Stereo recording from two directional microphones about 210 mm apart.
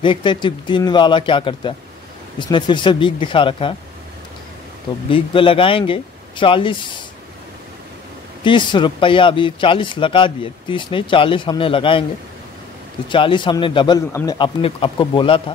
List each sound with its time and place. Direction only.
0.0 s speech: 20° left (ahead or behind)
5.1 s speech: 25° left (ahead or behind)
8.5 s speech: 25° left (ahead or behind)
13.1 s speech: 25° left (ahead or behind)